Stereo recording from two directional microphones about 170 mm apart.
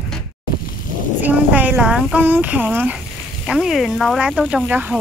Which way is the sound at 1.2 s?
10° right (ahead or behind).